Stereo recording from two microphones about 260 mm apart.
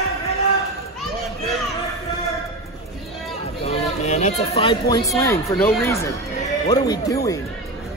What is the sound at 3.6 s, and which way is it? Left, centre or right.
Speech, left.